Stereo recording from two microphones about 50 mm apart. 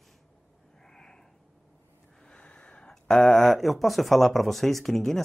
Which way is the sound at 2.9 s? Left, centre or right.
Centre.